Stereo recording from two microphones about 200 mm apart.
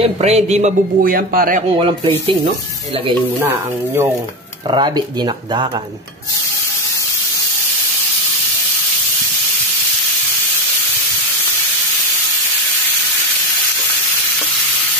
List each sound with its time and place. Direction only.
0.0 s speech: 30° right (ahead or behind)
1.7 s speech: 25° right (ahead or behind)
3.3 s speech: 10° right (ahead or behind)
4.6 s speech: 25° right (ahead or behind)